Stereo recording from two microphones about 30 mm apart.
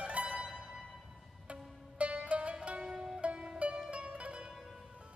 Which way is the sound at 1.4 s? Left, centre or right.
Right.